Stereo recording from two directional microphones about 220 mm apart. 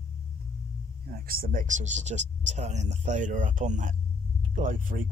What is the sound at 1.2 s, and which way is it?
Speech, 40° right (ahead or behind).